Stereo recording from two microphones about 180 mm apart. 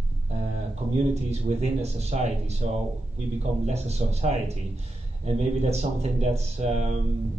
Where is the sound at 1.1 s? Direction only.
35° right (ahead or behind).